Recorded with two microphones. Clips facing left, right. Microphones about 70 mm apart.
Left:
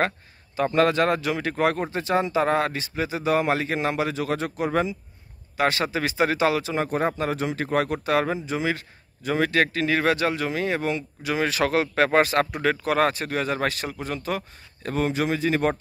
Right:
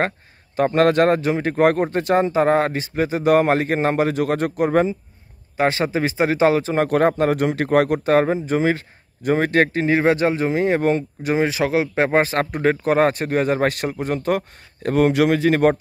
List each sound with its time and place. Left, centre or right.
0.6 s a man's voice: right
1.6 s speech: right
5.6 s a man's voice: right
6.9 s speech: right
8.0 s a man's voice: right
11.4 s speech: centre; by 15.7 s right